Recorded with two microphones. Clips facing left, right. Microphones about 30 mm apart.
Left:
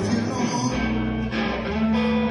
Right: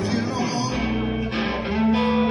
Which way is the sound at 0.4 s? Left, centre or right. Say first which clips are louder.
Even; right.